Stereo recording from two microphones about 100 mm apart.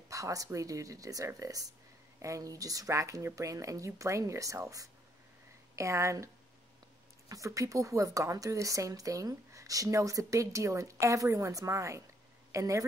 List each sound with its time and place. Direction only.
0.1 s a woman's voice: 35° right (ahead or behind)